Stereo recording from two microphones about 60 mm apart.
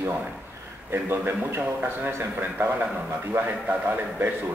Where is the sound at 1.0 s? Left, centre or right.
Right.